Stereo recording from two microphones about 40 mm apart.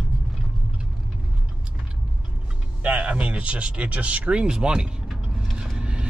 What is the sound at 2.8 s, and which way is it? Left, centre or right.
Speech, right.